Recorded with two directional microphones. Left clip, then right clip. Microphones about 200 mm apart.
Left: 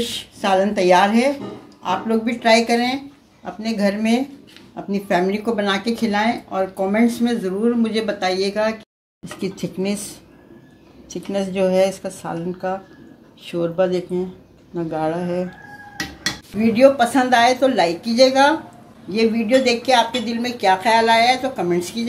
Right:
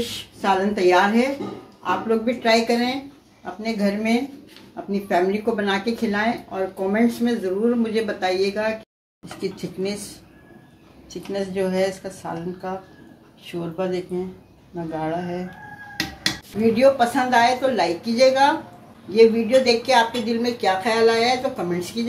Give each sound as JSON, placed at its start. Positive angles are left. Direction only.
{"t": 0.4, "sound": "speech", "side_deg": 55}
{"t": 9.2, "sound": "speech", "side_deg": 45}
{"t": 11.1, "sound": "speech", "side_deg": 45}
{"t": 16.7, "sound": "speech", "side_deg": 55}